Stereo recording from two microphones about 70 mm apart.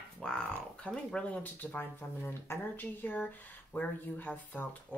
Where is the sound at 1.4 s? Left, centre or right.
Left.